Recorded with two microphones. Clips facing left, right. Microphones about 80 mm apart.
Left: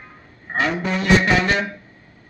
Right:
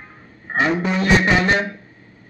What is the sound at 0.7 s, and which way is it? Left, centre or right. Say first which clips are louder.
Music: even; centre.